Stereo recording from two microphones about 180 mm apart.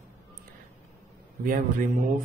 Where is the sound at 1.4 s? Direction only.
50° right (ahead or behind).